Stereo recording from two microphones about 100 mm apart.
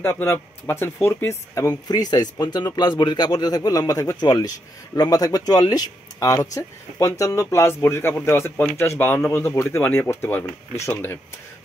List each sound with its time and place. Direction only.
0.0 s speech: 20° left (ahead or behind)
1.9 s speech: 40° left (ahead or behind); by 11.1 s 20° left (ahead or behind)